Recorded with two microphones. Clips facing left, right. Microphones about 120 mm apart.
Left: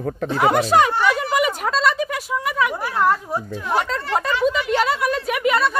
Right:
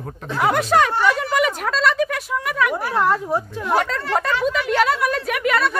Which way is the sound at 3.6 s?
Centre (ahead or behind).